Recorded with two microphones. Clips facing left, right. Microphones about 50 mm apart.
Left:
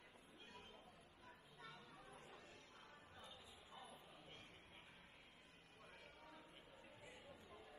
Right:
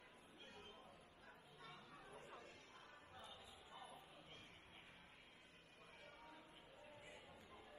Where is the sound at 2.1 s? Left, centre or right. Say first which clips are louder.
Right 3 dB; right.